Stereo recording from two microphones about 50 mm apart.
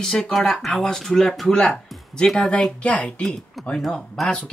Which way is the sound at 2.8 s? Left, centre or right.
Left.